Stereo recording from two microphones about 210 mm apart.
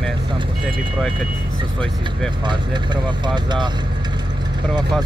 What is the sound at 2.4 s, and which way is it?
Speech, 20° right (ahead or behind).